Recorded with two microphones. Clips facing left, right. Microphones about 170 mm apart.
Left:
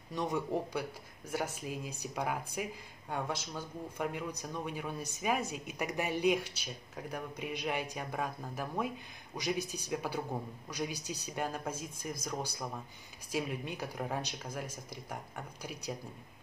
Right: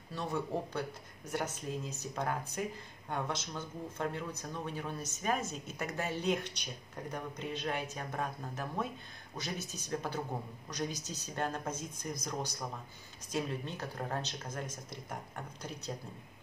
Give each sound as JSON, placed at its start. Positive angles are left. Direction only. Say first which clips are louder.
{"t": 0.1, "sound": "speech", "louder": "left 2 dB", "side_deg": 15}